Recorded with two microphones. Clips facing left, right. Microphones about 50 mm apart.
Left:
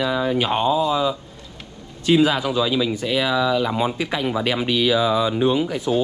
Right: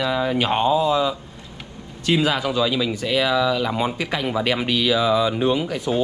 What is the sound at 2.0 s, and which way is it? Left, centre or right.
Speech, right.